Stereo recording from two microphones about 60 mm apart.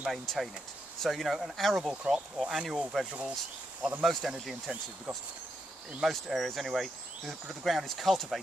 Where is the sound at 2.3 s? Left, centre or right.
Centre.